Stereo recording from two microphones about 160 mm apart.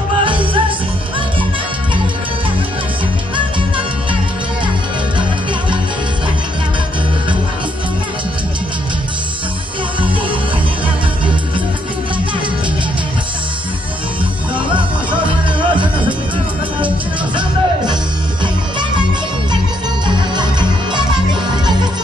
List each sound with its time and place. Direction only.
0.2 s music: 30° right (ahead or behind)
3.3 s music: 30° right (ahead or behind)
14.7 s music: 30° right (ahead or behind)
20.1 s music: 30° right (ahead or behind)